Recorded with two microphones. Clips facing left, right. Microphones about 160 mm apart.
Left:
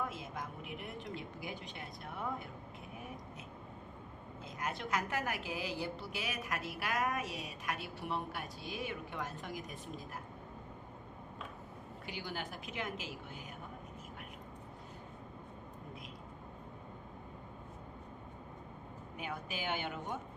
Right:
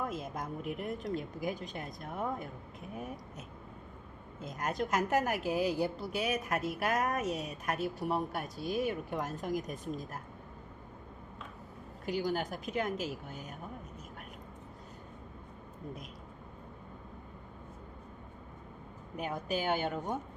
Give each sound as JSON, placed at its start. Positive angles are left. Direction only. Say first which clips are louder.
{"t": 0.1, "sound": "a woman's voice", "louder": "right 6 dB", "side_deg": -40}
{"t": 4.4, "sound": "a woman's voice", "louder": "right 6 dB", "side_deg": -45}
{"t": 12.1, "sound": "a woman's voice", "louder": "right 10 dB", "side_deg": -40}
{"t": 19.1, "sound": "a woman's voice", "louder": "right 8 dB", "side_deg": -40}